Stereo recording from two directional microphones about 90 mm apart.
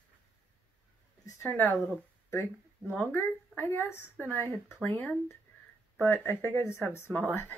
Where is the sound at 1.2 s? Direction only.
30° left (ahead or behind).